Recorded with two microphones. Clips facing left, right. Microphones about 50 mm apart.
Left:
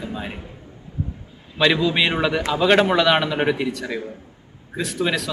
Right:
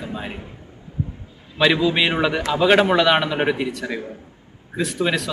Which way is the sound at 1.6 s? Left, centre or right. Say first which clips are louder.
Right 1 dB; centre.